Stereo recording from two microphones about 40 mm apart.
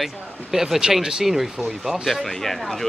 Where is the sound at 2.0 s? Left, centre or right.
Centre.